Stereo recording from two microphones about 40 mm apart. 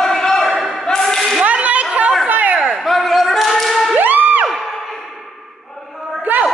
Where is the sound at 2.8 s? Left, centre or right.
Centre.